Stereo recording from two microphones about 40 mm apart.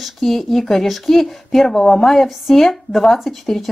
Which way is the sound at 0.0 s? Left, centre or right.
Centre.